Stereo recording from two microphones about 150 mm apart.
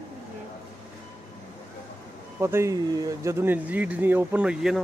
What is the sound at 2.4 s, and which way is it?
Speech, 20° right (ahead or behind).